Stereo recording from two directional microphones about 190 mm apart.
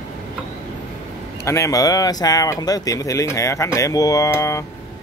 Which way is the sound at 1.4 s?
15° left (ahead or behind).